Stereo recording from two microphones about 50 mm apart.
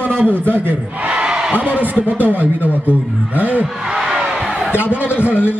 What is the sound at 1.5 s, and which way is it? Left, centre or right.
Speech, right.